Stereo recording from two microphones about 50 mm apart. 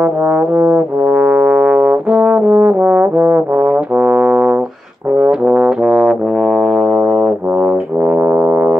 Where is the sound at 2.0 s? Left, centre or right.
Centre.